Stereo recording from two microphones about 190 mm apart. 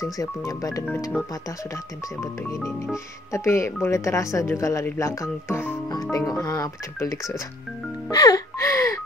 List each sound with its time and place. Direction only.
0.0 s speech: 15° left (ahead or behind)
2.1 s speech: 15° left (ahead or behind)
8.1 s music: 20° left (ahead or behind)